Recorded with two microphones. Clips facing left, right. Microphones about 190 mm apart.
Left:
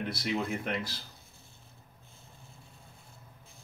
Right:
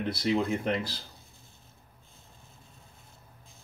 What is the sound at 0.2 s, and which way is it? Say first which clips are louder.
Speech: right 6 dB; 30° right (ahead or behind).